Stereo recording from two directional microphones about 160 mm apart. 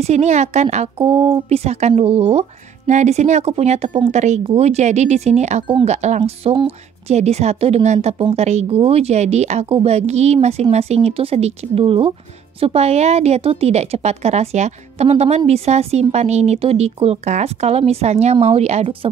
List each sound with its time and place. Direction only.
0.0 s a woman's voice: 45° right (ahead or behind)
1.0 s a woman's voice: 30° right (ahead or behind)